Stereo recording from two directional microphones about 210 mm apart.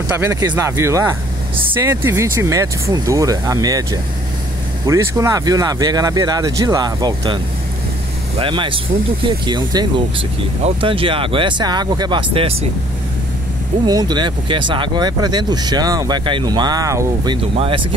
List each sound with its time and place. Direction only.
0.1 s speech: 15° right (ahead or behind)
8.4 s speech: 25° right (ahead or behind)
13.8 s speech: 20° right (ahead or behind)